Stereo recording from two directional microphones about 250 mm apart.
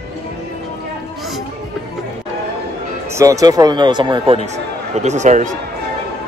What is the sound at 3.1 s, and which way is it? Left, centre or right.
Speech, centre.